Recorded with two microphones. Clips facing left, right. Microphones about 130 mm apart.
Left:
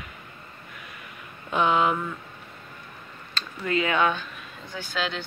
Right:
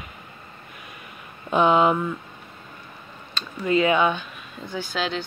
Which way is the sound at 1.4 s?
30° right (ahead or behind).